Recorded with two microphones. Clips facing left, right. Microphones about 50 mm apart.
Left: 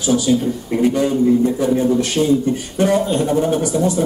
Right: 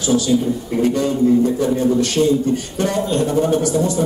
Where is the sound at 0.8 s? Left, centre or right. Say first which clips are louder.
Left 1 dB; centre.